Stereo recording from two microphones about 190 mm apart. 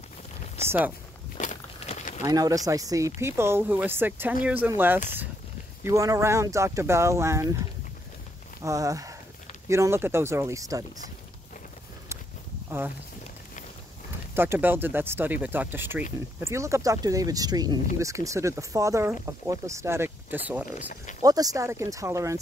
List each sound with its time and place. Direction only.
0.7 s speech: 10° right (ahead or behind)
1.4 s walk: 35° left (ahead or behind)
2.2 s speech: 20° right (ahead or behind)
8.6 s speech: 15° right (ahead or behind)
12.6 s speech: 10° right (ahead or behind)
14.3 s speech: 10° right (ahead or behind)
21.2 s speech: 20° right (ahead or behind)